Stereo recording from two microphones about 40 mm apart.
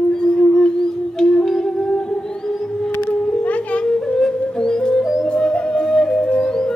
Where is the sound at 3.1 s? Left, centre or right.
Left.